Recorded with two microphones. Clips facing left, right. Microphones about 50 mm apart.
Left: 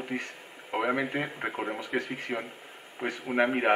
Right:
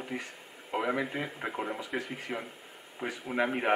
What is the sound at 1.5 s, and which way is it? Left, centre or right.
Speech, centre.